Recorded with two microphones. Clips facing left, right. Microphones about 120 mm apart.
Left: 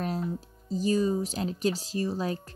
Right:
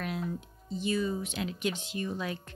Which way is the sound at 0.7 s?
35° left (ahead or behind).